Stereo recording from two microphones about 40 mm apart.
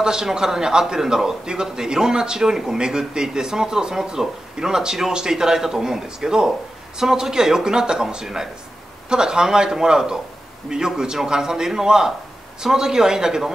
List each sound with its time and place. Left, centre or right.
0.0 s a man's voice: centre